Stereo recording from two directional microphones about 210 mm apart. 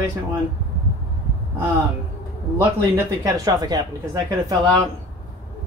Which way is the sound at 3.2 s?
15° right (ahead or behind).